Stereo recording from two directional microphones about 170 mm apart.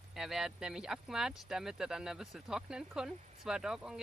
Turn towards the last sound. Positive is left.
turn(degrees=-5)  # may be behind; listen again after turning